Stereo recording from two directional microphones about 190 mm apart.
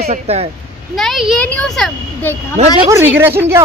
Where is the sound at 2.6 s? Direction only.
35° right (ahead or behind).